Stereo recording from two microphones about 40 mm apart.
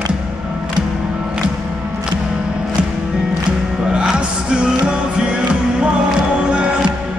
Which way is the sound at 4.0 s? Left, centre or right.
Right.